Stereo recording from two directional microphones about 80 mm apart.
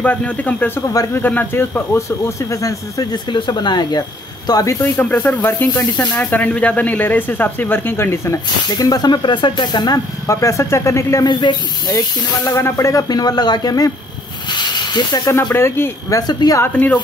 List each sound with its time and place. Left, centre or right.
0.0 s speech: left
3.3 s speech: left
4.9 s speech: centre
8.7 s speech: left
10.2 s speech: left
11.2 s speech: left
12.5 s speech: left
13.1 s speech: left
14.5 s snake: left
15.5 s speech: left
16.1 s speech: left
16.7 s speech: centre